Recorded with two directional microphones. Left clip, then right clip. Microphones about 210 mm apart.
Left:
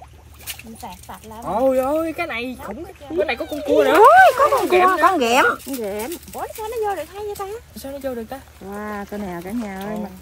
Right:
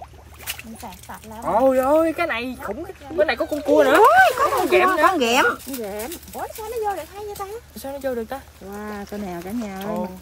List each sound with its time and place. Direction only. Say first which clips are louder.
1.4 s speech: right 1 dB; centre (ahead or behind)
5.8 s speech: left 3 dB; 50° left (ahead or behind)
6.3 s speech: left 1 dB; 25° left (ahead or behind)
7.8 s speech: right 2 dB; centre (ahead or behind)
8.7 s speech: left 4 dB; 20° left (ahead or behind)
9.1 s speech: left 1 dB; centre (ahead or behind)